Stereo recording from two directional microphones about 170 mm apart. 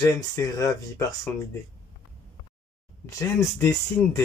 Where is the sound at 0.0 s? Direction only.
20° left (ahead or behind).